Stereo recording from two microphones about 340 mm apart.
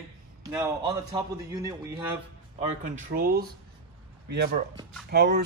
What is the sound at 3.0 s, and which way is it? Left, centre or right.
Speech, right.